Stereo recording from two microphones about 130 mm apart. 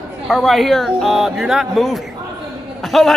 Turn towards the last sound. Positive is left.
turn(degrees=0)  # may be behind; listen again after turning